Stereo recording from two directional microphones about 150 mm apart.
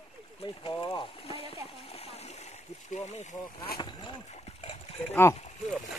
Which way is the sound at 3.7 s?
30° left (ahead or behind).